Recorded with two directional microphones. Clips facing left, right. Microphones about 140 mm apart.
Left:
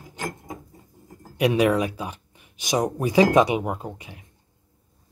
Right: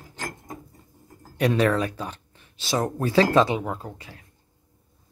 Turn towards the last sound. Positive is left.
turn(degrees=20)  # may be behind; listen again after turning